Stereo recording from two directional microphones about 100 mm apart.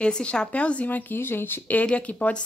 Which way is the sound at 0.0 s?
10° left (ahead or behind).